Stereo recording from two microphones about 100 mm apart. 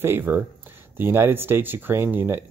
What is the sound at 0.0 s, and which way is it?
Speech, 20° right (ahead or behind).